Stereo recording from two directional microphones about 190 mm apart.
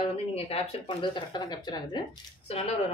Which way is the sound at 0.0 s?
30° left (ahead or behind).